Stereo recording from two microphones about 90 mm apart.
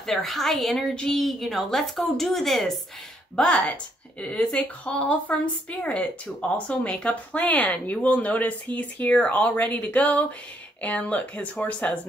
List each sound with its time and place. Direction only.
0.0 s a woman's voice: centre (ahead or behind)